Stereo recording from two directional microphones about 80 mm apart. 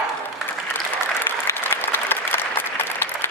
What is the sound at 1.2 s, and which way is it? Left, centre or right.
Applause, left.